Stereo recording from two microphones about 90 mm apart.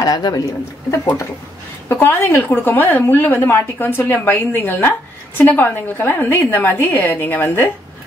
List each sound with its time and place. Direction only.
0.0 s speech: 45° left (ahead or behind)
1.9 s a woman's voice: 25° left (ahead or behind)